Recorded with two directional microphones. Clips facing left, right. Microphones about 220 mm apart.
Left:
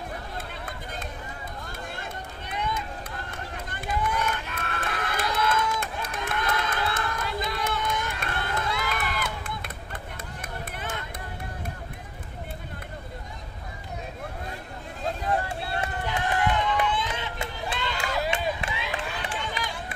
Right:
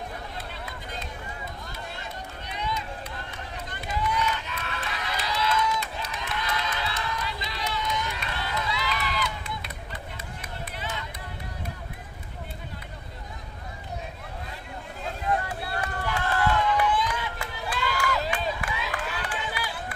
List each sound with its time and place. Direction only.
2.0 s run: 50° left (ahead or behind)
10.8 s a sound: 50° left (ahead or behind)
15.2 s run: 30° left (ahead or behind)